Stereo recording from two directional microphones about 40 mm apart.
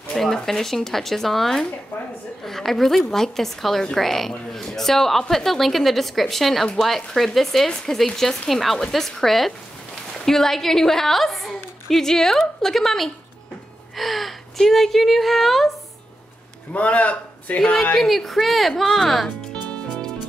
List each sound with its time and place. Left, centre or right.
0.1 s a woman's voice: centre
13.9 s gasp: centre
14.7 s a woman's voice: centre
16.7 s a man's voice: left
17.9 s a woman's voice: centre
19.9 s music: centre